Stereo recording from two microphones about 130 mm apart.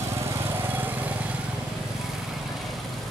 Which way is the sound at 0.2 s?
20° right (ahead or behind).